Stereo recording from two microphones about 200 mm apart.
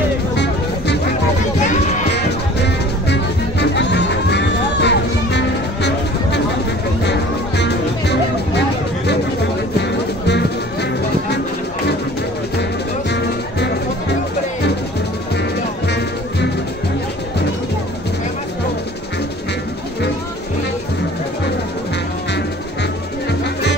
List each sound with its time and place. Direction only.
2.1 s music: 60° left (ahead or behind)